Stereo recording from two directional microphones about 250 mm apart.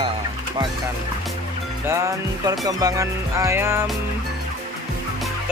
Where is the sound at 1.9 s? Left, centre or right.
Centre.